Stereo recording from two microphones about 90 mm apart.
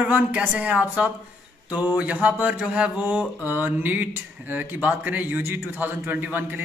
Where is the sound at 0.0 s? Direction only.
15° right (ahead or behind).